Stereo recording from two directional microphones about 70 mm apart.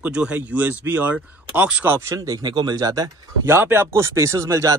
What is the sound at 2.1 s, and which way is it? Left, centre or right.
Speech, right.